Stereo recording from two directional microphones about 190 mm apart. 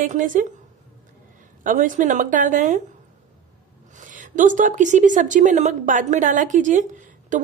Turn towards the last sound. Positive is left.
turn(degrees=-40)  # may be behind; listen again after turning